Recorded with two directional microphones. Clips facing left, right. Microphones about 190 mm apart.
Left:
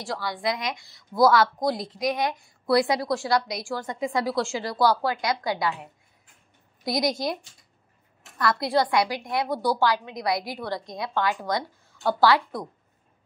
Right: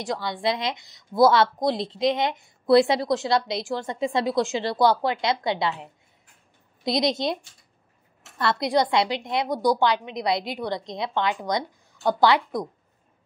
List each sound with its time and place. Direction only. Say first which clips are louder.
0.0 s speech: right 3 dB; 20° right (ahead or behind)
8.4 s speech: right 1 dB; 25° right (ahead or behind)